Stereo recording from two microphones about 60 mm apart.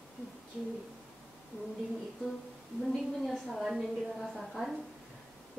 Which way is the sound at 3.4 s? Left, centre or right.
Centre.